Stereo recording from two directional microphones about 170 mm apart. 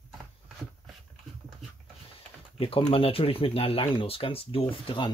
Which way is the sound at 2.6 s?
30° left (ahead or behind).